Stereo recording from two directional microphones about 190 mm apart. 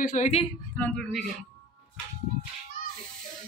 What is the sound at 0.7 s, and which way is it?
Speech, 5° left (ahead or behind).